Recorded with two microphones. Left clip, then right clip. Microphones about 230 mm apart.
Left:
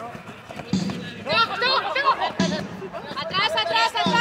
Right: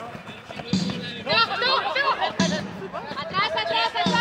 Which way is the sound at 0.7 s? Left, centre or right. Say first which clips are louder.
Even; right.